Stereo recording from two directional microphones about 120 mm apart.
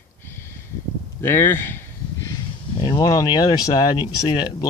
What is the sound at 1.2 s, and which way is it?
Speech, 20° left (ahead or behind).